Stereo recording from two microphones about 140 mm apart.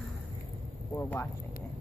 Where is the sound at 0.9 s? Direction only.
15° left (ahead or behind).